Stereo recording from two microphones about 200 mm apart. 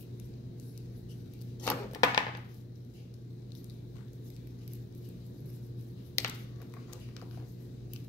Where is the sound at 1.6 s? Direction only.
15° left (ahead or behind).